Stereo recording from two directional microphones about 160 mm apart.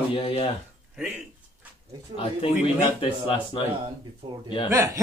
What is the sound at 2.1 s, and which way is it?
Mantra, 35° left (ahead or behind).